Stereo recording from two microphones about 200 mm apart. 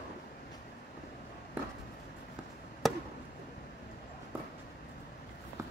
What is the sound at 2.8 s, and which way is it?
Chop, centre (ahead or behind).